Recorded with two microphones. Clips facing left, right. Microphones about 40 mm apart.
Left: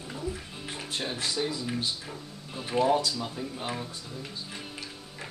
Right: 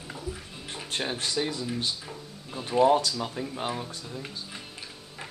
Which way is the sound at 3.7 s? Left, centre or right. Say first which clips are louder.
Right 2 dB; centre.